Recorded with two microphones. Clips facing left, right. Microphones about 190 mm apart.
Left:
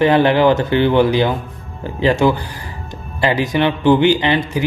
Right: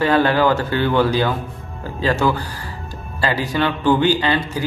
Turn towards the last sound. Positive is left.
turn(degrees=20)  # may be behind; listen again after turning